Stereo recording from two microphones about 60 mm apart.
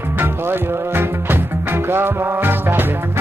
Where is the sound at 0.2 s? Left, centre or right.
Right.